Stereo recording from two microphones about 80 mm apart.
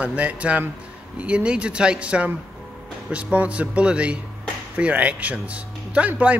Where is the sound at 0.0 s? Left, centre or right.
Centre.